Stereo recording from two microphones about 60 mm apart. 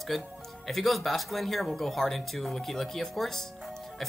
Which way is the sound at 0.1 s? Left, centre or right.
Centre.